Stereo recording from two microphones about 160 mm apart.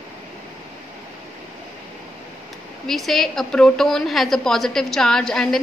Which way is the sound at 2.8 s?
Centre (ahead or behind).